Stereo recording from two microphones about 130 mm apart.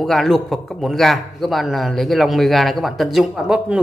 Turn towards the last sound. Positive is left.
turn(degrees=-5)  # may be behind; listen again after turning